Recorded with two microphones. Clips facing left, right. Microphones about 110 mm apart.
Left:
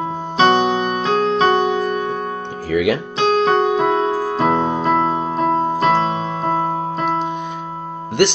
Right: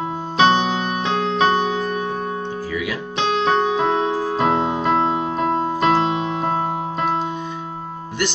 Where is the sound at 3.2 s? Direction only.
40° left (ahead or behind).